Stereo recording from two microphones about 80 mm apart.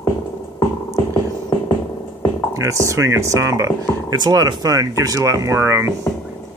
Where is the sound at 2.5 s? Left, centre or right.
Right.